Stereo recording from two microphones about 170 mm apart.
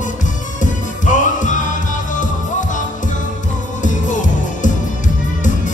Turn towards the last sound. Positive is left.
turn(degrees=50)  # may be behind; listen again after turning